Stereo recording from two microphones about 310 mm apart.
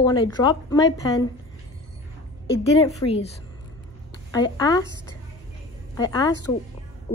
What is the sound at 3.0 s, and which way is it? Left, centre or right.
Speech, centre.